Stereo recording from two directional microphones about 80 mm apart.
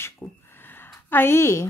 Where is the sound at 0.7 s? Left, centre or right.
Left.